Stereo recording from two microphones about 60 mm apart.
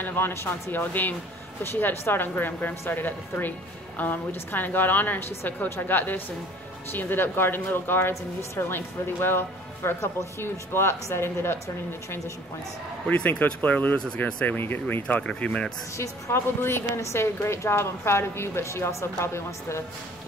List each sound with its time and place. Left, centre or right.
0.0 s a woman's voice: left
8.1 s speech: left
8.6 s a woman's voice: left
13.1 s speech: left
14.6 s speech: left; by 15.7 s centre
16.0 s a woman's voice: left